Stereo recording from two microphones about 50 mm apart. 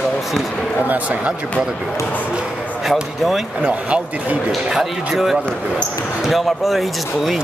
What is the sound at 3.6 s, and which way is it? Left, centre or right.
Speech, right.